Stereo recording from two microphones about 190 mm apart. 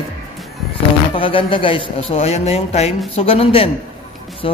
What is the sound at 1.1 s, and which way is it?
A man's voice, 30° left (ahead or behind).